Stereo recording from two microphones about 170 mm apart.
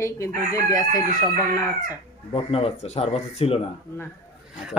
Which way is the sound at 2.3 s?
35° left (ahead or behind).